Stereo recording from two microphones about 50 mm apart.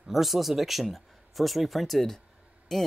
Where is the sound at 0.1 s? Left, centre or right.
Centre.